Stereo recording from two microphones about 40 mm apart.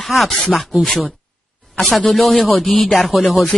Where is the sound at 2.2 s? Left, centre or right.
Centre.